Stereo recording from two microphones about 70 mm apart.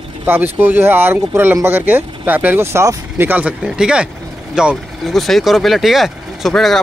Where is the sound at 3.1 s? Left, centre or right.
Right.